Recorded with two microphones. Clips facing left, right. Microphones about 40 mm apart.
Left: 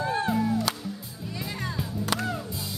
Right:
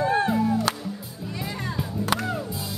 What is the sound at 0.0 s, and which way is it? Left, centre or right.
Music, right.